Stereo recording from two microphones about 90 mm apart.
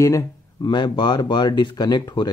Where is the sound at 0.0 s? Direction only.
35° left (ahead or behind).